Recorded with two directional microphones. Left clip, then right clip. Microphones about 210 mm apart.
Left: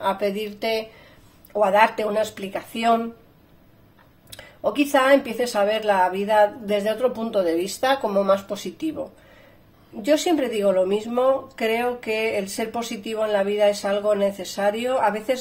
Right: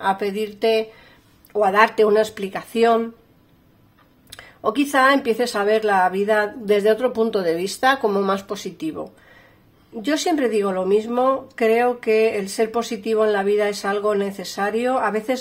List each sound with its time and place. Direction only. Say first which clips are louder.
0.0 s speech: right 2 dB; 40° right (ahead or behind)
4.7 s speech: right 1 dB; 45° right (ahead or behind)
10.0 s speech: even; 40° right (ahead or behind)